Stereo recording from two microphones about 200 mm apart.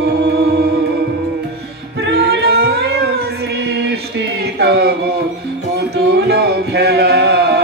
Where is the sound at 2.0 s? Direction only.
55° right (ahead or behind).